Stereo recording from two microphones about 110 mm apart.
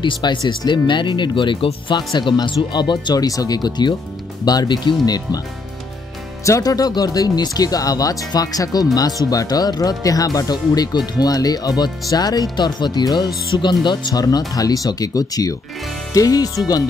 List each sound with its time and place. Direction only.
0.0 s speech: 45° left (ahead or behind)
6.4 s speech: 30° left (ahead or behind)